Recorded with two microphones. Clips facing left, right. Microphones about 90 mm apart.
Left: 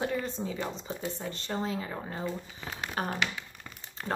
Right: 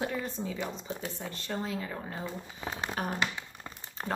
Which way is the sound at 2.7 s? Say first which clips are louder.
Right 3 dB; 30° right (ahead or behind).